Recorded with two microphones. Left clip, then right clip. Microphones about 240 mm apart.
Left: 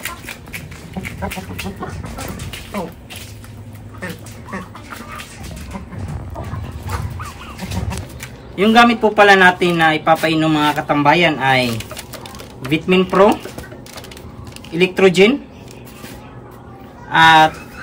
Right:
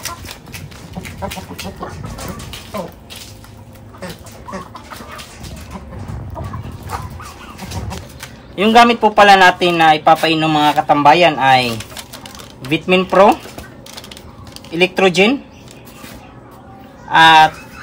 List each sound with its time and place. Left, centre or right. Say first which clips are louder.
7.9 s a sound: even; centre
8.6 s speech: right 2 dB; right
12.6 s speech: right 1 dB; right
14.8 s speech: even; right
17.1 s speech: right 2 dB; right